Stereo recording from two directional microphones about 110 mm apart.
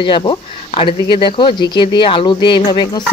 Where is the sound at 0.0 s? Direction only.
50° left (ahead or behind).